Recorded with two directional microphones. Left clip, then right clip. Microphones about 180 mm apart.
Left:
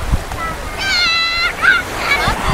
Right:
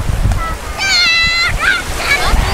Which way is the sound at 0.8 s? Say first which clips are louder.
Right 4 dB; 55° right (ahead or behind).